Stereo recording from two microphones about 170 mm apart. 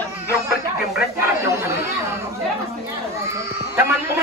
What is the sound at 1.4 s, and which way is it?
Speech, 15° right (ahead or behind).